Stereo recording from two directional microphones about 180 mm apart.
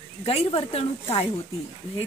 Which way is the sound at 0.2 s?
35° left (ahead or behind).